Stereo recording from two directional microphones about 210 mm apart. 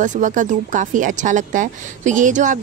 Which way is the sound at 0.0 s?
35° right (ahead or behind).